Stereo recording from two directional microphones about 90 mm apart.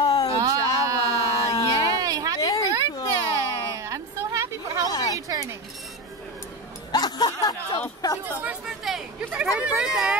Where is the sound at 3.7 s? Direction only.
35° right (ahead or behind).